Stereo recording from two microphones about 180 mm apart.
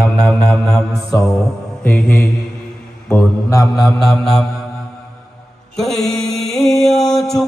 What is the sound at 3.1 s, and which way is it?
Mantra, 15° left (ahead or behind).